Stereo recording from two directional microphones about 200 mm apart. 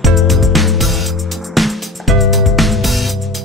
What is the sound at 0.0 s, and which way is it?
Music, centre (ahead or behind).